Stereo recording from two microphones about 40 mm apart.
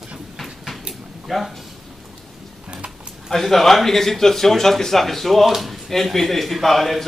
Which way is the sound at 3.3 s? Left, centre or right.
Centre.